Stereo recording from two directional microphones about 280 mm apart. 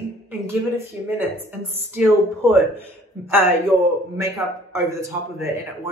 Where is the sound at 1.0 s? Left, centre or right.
Centre.